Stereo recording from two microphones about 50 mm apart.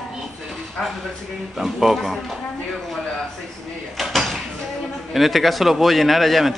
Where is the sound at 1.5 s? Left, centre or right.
Centre.